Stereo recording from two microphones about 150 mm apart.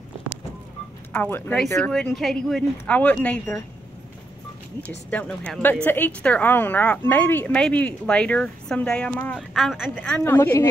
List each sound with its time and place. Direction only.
1.1 s a woman's voice: 10° left (ahead or behind)
4.8 s a woman's voice: 10° left (ahead or behind)